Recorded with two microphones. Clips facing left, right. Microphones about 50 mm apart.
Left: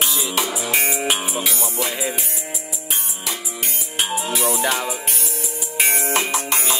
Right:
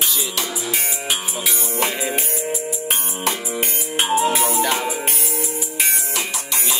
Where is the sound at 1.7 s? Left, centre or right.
Right.